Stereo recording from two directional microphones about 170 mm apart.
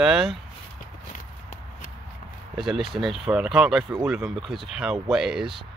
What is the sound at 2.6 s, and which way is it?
Speech, centre (ahead or behind).